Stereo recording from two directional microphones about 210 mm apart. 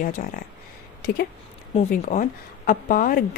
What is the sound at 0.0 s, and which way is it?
A woman's voice, 40° left (ahead or behind).